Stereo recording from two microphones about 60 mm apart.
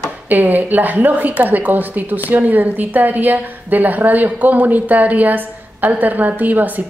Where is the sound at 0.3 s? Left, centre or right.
Right.